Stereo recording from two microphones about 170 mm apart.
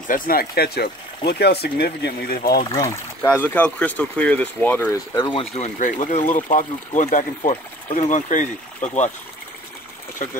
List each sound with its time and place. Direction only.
0.1 s speech: 60° left (ahead or behind)
2.7 s speech: 15° left (ahead or behind)
4.9 s speech: 25° left (ahead or behind)
5.6 s speech: 45° left (ahead or behind)